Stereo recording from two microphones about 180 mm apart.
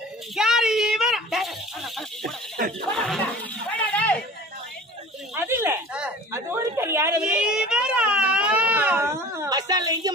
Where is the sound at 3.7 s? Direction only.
10° left (ahead or behind).